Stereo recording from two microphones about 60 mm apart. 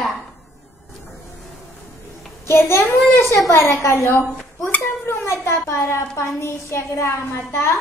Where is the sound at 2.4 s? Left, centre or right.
Left.